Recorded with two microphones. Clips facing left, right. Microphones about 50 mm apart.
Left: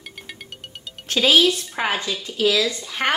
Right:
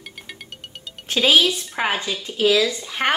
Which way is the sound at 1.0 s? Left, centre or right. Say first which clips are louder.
Even; centre.